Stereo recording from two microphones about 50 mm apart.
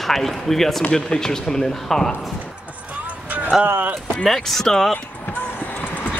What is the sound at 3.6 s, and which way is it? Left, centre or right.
Speech, right.